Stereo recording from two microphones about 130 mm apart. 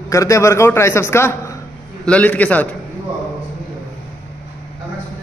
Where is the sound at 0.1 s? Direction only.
25° left (ahead or behind).